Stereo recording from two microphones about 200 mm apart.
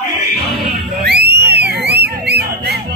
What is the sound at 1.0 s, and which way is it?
Music, 55° right (ahead or behind).